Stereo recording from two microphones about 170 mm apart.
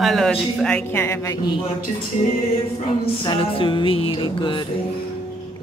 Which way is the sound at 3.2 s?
30° left (ahead or behind).